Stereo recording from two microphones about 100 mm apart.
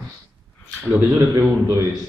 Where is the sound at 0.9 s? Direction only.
20° right (ahead or behind).